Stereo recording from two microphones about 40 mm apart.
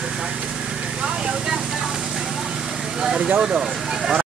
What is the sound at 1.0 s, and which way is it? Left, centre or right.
Speech, right.